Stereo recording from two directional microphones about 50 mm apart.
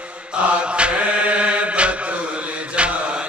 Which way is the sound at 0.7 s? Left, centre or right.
Right.